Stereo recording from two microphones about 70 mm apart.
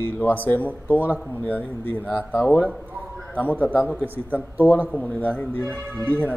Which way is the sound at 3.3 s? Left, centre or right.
Left.